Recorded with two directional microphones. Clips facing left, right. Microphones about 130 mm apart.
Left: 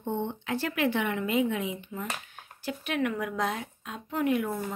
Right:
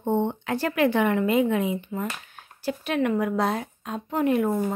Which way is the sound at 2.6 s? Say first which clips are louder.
Right 5 dB; 35° right (ahead or behind).